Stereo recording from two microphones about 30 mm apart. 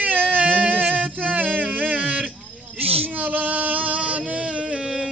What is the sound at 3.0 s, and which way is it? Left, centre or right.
Music, right.